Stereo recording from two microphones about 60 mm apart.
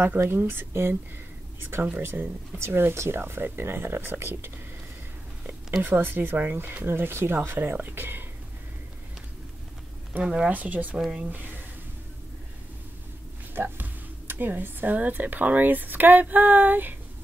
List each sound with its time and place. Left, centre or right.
0.2 s speech: right
2.6 s speech: right
5.8 s speech: right
10.2 s speech: centre
10.5 s speech: right
13.6 s speech: right